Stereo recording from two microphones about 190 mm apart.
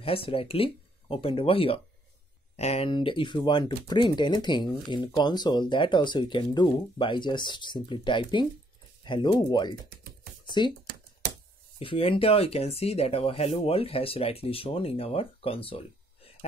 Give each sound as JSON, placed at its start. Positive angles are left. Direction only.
{"t": 0.0, "sound": "speech", "side_deg": 30}
{"t": 9.8, "sound": "typing", "side_deg": -50}
{"t": 11.8, "sound": "speech", "side_deg": 25}